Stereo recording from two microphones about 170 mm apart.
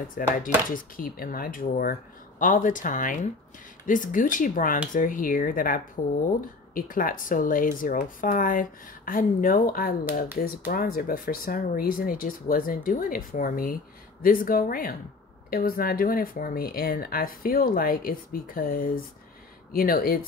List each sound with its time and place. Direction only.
0.2 s speech: 55° left (ahead or behind)